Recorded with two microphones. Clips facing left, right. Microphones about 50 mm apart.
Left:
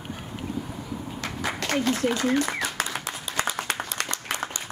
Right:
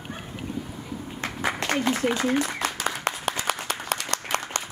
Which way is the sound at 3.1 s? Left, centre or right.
Right.